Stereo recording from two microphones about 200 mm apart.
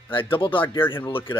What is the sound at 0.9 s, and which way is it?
Speech, 25° left (ahead or behind).